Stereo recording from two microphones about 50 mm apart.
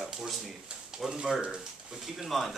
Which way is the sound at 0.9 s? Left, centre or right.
Centre.